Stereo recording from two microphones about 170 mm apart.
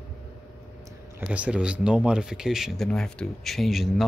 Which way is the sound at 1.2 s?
10° right (ahead or behind).